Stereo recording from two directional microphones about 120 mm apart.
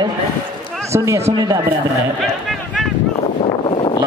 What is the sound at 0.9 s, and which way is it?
Speech, 25° right (ahead or behind).